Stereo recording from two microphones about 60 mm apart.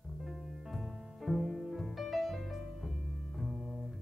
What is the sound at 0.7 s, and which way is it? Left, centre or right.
Music, centre.